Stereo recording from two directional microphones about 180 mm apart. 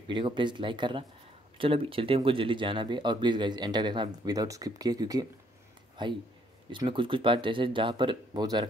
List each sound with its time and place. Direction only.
0.1 s speech: 25° right (ahead or behind)